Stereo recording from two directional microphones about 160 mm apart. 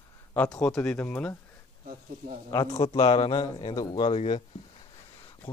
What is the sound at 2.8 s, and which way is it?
A man's voice, 35° left (ahead or behind).